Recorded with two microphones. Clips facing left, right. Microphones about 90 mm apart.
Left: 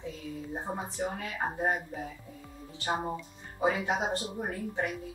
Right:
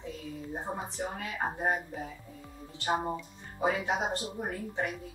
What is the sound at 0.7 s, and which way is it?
Speech, centre (ahead or behind).